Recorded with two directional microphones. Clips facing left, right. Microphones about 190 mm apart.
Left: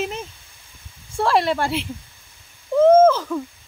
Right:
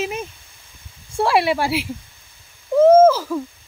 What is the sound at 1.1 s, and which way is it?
Speech, 10° right (ahead or behind).